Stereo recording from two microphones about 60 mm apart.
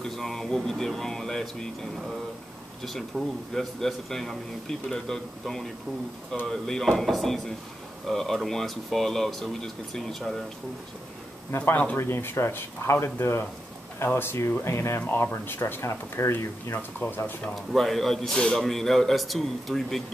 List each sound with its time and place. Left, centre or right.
0.0 s speech: centre
2.8 s a man's voice: centre
11.7 s speech: left
12.0 s speech: left
15.0 s speech: left
16.7 s speech: left
17.6 s a man's voice: centre